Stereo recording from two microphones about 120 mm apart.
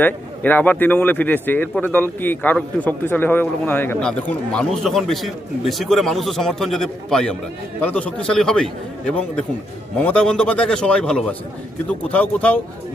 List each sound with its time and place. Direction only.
0.0 s a man's voice: 15° left (ahead or behind)
4.0 s a man's voice: 5° left (ahead or behind)